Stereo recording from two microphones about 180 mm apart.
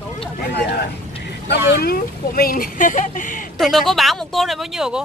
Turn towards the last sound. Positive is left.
turn(degrees=0)  # may be behind; listen again after turning